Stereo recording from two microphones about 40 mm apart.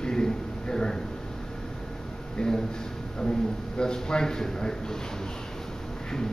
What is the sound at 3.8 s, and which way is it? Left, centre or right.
A man's voice, centre.